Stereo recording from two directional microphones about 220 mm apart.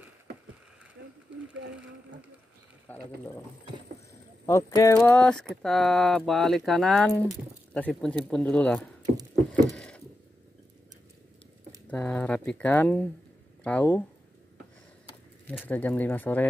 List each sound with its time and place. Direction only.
1.0 s a sound: 45° right (ahead or behind)
2.9 s speech: 10° left (ahead or behind)
4.5 s speech: 15° left (ahead or behind)
9.7 s a sound: 5° left (ahead or behind)
11.9 s speech: 5° left (ahead or behind)
15.6 s speech: 10° left (ahead or behind)